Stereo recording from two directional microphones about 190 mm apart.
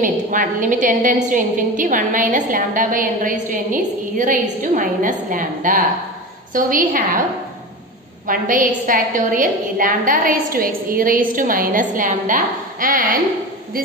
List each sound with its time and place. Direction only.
0.0 s a woman's voice: 45° right (ahead or behind)
8.3 s a woman's voice: 45° right (ahead or behind)